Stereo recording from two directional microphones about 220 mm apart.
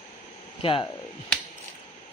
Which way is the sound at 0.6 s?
20° left (ahead or behind).